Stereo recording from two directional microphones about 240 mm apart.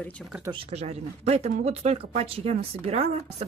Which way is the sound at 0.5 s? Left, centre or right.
Right.